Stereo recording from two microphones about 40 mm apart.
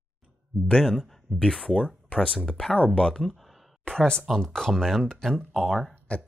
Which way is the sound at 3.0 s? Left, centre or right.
Centre.